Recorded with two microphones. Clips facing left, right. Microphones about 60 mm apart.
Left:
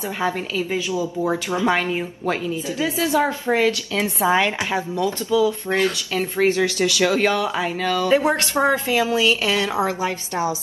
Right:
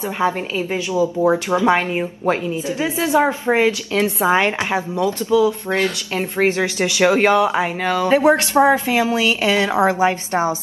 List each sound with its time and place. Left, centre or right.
0.2 s a woman's voice: right